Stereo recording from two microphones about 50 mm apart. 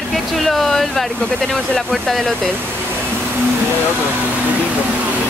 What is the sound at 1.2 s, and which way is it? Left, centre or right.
Speech, centre.